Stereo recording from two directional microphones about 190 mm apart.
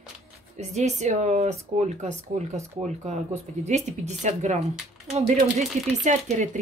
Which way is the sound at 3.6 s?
35° right (ahead or behind).